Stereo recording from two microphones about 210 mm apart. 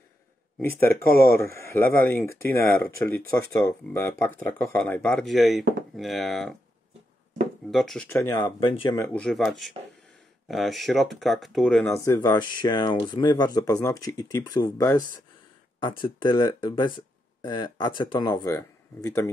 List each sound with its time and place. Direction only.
0.6 s speech: 10° left (ahead or behind)
7.7 s speech: centre (ahead or behind); by 9.0 s 25° left (ahead or behind)
9.0 s speech: 5° left (ahead or behind)